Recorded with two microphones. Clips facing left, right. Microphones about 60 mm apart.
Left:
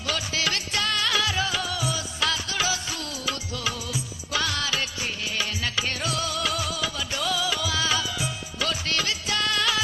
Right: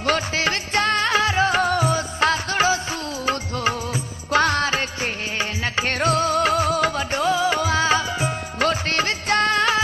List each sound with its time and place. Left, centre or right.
0.0 s music: right
3.3 s music of bollywood: right
5.4 s music: right